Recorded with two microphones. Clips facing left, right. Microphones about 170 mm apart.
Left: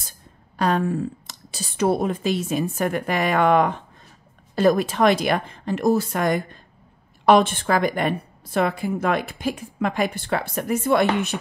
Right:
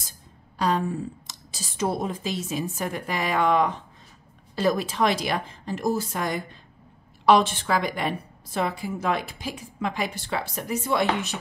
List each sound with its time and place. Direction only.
0.6 s a woman's voice: 60° left (ahead or behind)